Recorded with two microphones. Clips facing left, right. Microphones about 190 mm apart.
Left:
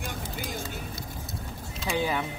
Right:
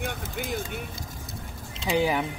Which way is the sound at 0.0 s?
60° right (ahead or behind).